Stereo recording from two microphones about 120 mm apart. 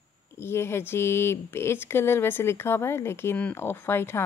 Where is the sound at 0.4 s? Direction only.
20° left (ahead or behind).